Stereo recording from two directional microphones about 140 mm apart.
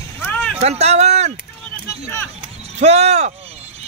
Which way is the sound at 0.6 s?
50° right (ahead or behind).